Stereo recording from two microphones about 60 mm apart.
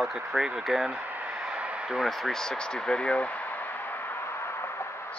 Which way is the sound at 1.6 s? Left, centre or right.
Centre.